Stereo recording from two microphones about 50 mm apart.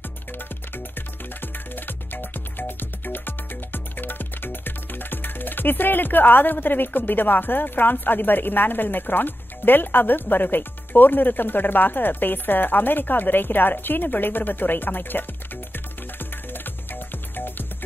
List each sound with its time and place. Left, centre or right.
0.7 s music: left
10.2 s speech: left
16.5 s music: left